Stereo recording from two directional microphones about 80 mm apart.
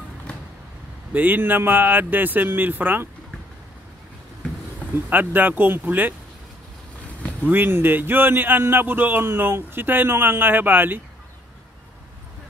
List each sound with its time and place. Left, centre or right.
1.1 s a man's voice: right
4.9 s a man's voice: right
7.4 s a man's voice: right